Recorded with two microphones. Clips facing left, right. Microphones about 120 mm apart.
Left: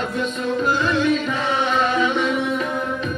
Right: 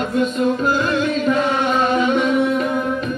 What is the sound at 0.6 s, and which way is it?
Music, 45° right (ahead or behind).